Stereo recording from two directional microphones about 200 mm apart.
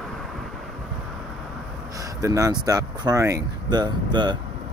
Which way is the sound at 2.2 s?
15° right (ahead or behind).